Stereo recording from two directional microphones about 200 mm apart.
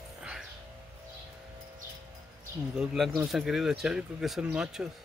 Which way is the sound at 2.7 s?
Centre (ahead or behind).